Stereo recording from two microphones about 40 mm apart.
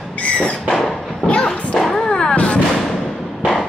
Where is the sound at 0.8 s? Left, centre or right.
Left.